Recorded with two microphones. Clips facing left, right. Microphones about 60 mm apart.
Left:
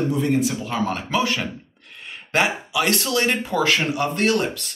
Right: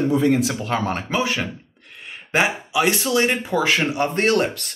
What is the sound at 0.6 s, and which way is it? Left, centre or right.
Speech, right.